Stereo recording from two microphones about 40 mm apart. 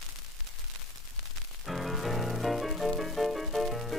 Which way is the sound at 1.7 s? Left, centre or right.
Centre.